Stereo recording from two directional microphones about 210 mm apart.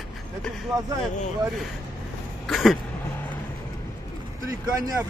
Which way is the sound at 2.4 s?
Centre (ahead or behind).